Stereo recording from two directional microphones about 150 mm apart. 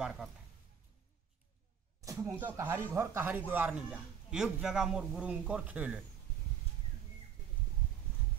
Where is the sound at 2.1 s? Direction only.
20° right (ahead or behind).